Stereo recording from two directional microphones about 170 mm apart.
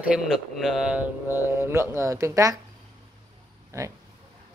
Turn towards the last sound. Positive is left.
turn(degrees=-15)  # may be behind; listen again after turning